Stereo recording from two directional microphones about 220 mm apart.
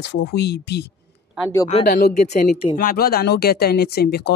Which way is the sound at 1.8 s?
45° left (ahead or behind).